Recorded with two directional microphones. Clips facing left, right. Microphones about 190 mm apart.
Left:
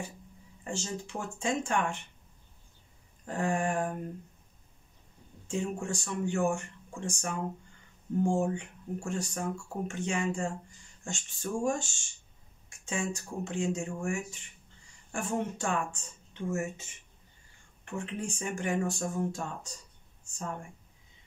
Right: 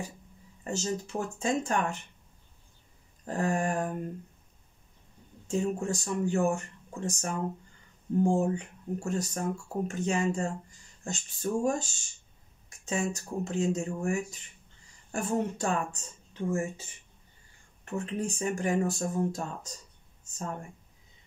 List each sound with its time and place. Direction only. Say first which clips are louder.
0.7 s speech: right 4 dB; 40° right (ahead or behind)
3.3 s speech: right 1 dB; 40° right (ahead or behind)
5.5 s speech: right 4 dB; 35° right (ahead or behind)
17.8 s speech: right 4 dB; 40° right (ahead or behind)